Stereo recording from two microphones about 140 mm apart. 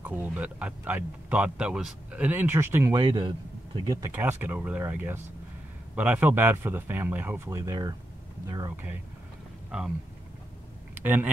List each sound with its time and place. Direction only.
0.0 s speech: 10° right (ahead or behind)
2.9 s a man's voice: 30° right (ahead or behind)
3.9 s speech: 20° right (ahead or behind)
9.7 s speech: 5° right (ahead or behind)
11.0 s speech: 15° right (ahead or behind)